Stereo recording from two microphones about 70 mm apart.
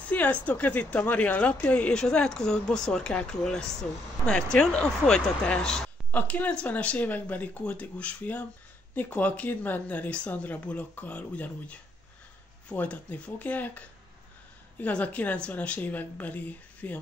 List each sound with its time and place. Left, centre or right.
0.1 s speech: left
6.1 s speech: left